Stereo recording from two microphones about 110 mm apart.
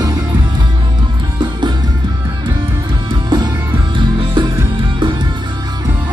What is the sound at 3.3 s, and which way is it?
Music, 45° right (ahead or behind).